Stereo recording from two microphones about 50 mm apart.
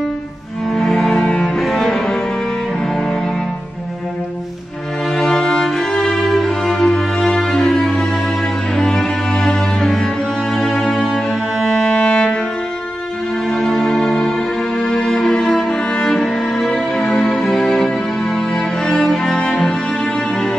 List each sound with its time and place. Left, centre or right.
0.7 s cello: centre
5.1 s music: centre
8.7 s cello: centre
10.5 s music: centre; by 12.4 s left
13.5 s music: centre
14.8 s cello: centre
17.0 s music: left
17.3 s music: centre